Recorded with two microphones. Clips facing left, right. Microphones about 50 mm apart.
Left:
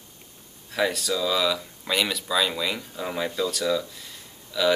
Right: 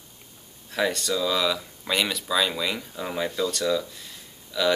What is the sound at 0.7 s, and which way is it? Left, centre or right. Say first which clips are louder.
Speech: even; centre.